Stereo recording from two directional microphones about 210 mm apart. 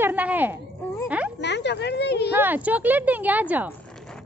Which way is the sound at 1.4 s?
55° left (ahead or behind).